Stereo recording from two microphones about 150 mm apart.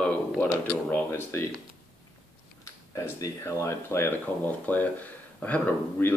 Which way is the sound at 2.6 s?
20° left (ahead or behind).